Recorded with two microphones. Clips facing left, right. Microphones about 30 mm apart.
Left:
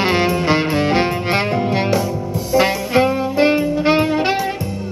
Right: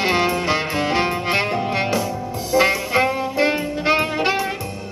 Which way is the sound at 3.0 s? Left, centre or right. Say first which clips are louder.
Left 5 dB; centre.